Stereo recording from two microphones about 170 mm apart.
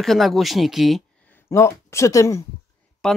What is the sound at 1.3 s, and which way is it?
Speech, 15° left (ahead or behind).